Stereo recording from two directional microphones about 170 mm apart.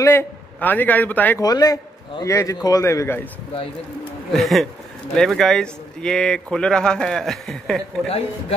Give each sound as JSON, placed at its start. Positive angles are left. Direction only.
{"t": 0.0, "sound": "a man's voice", "side_deg": 15}
{"t": 1.4, "sound": "a man's voice", "side_deg": 20}
{"t": 4.3, "sound": "speech", "side_deg": 0}